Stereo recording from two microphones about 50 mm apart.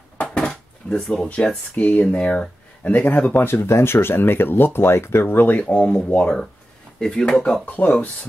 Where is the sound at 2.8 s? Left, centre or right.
Left.